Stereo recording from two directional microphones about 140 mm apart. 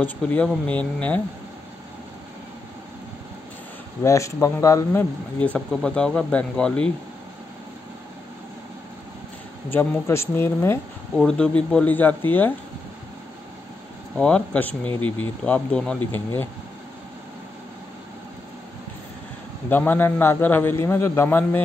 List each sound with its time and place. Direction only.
0.0 s a man's voice: 10° left (ahead or behind)
4.0 s speech: 20° left (ahead or behind)
5.4 s a man's voice: 5° left (ahead or behind)
9.7 s a man's voice: 15° left (ahead or behind)
11.1 s a man's voice: 5° left (ahead or behind)
14.1 s a man's voice: 5° left (ahead or behind)
19.7 s a man's voice: 15° left (ahead or behind)